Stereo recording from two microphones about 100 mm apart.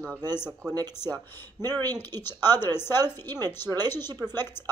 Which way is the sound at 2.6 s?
25° left (ahead or behind).